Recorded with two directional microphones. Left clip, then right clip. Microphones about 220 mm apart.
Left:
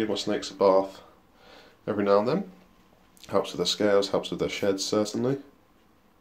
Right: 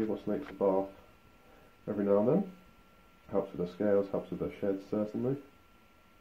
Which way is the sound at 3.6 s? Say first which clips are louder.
Left 7 dB; 40° left (ahead or behind).